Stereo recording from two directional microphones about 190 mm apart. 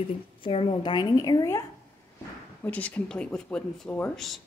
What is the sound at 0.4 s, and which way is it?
Speech, 30° left (ahead or behind).